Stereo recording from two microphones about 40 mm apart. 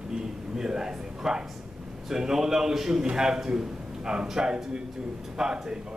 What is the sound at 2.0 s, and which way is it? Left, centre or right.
A man's voice, centre.